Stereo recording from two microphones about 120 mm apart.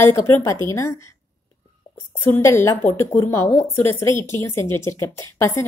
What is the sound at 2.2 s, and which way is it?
A woman's voice, 20° left (ahead or behind).